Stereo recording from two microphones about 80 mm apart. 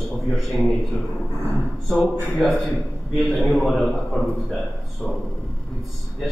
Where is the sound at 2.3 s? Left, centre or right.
Centre.